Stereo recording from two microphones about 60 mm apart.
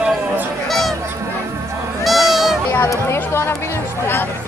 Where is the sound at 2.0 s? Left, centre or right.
Centre.